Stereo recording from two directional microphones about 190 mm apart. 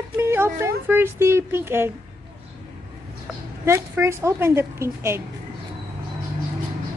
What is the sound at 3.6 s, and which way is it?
A woman's voice, 15° right (ahead or behind).